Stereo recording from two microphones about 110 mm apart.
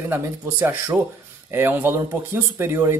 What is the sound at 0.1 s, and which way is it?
Speech, 20° right (ahead or behind).